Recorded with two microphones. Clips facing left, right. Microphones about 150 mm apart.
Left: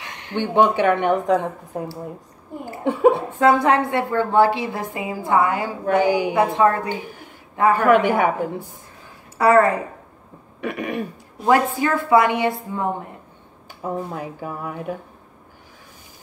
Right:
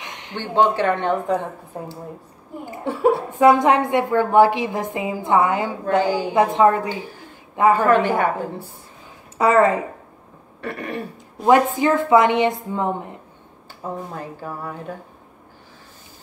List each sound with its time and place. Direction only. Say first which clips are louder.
0.0 s a sound: left 2 dB; 20° right (ahead or behind)
0.4 s speech: left 1 dB; 15° left (ahead or behind)
2.8 s speech: left 2 dB; 15° left (ahead or behind)
3.3 s a woman's voice: right 2 dB; 15° right (ahead or behind)
5.9 s speech: left 2 dB; 15° left (ahead or behind)
6.3 s a woman's voice: right 2 dB; 15° right (ahead or behind)
6.9 s speech: left 1 dB; 15° left (ahead or behind)
7.5 s a woman's voice: right 2 dB; 15° right (ahead or behind)
7.8 s speech: left 1 dB; 15° left (ahead or behind)
9.4 s a woman's voice: even; 20° right (ahead or behind)
10.6 s speech: left 3 dB; 15° left (ahead or behind)
11.4 s a woman's voice: right 2 dB; 20° right (ahead or behind)
13.8 s speech: left 3 dB; 10° left (ahead or behind)